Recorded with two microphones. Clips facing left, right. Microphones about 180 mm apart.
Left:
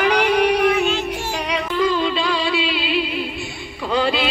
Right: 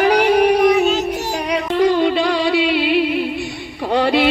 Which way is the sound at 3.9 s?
60° right (ahead or behind).